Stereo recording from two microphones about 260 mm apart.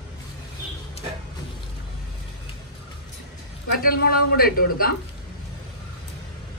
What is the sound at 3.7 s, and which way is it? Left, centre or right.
A man's voice, left.